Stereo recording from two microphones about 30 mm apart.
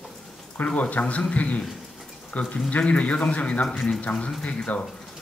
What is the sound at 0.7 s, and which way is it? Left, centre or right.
A man's voice, left.